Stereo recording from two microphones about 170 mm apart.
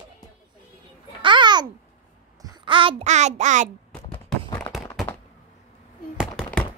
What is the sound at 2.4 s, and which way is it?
A child's voice, 25° right (ahead or behind).